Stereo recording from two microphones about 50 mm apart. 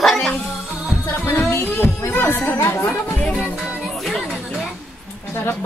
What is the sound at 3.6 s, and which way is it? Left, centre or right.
Music, centre.